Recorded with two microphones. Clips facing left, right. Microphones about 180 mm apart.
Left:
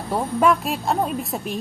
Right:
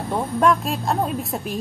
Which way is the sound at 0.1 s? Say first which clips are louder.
Even; 5° left (ahead or behind).